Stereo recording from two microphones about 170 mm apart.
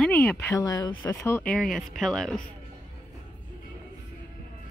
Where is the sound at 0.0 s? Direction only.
5° left (ahead or behind).